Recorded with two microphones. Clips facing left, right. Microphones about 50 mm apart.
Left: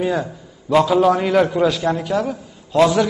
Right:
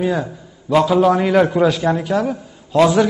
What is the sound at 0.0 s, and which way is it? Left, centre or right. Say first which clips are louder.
A man's voice: right 1 dB; centre.